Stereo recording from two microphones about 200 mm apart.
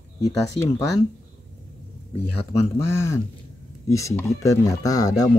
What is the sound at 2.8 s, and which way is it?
Speech, 15° left (ahead or behind).